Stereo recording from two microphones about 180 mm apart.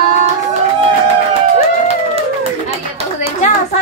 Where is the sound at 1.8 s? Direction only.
35° right (ahead or behind).